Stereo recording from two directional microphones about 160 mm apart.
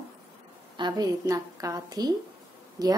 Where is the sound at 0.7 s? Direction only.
25° right (ahead or behind).